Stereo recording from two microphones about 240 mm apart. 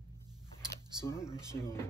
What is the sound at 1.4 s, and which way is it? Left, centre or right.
Speech, centre.